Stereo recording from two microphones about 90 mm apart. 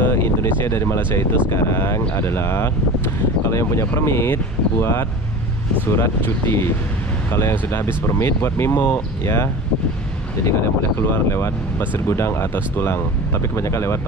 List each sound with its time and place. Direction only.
0.0 s speech: 25° left (ahead or behind)